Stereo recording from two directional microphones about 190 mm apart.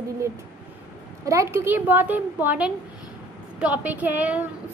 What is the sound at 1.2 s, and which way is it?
A woman's voice, 15° right (ahead or behind).